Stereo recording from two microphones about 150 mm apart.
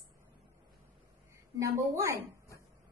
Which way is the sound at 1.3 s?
20° right (ahead or behind).